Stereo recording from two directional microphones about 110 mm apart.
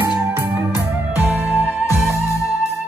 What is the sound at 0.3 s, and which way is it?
Music, 20° right (ahead or behind).